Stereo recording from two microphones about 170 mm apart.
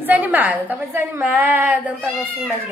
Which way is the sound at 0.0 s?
10° right (ahead or behind).